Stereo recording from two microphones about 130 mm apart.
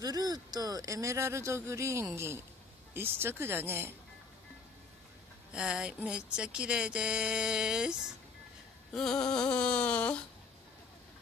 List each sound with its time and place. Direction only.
0.0 s speech: 30° right (ahead or behind)
5.5 s speech: 5° right (ahead or behind)
8.9 s a sound: 5° left (ahead or behind)